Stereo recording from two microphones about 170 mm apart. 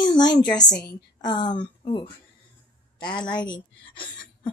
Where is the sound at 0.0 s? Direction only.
25° left (ahead or behind).